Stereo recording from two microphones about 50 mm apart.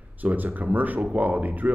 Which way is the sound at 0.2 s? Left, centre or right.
Right.